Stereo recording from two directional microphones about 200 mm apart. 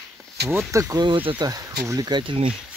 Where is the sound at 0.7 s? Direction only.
15° right (ahead or behind).